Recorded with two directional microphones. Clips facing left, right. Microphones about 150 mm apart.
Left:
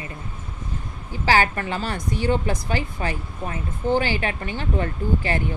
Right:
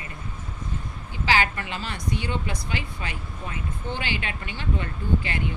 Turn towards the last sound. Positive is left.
turn(degrees=40)  # may be behind; listen again after turning